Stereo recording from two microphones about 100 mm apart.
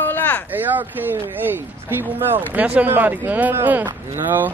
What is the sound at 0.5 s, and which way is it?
Speech, 20° right (ahead or behind).